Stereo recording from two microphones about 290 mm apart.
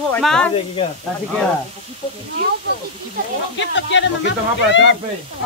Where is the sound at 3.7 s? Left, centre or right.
Left.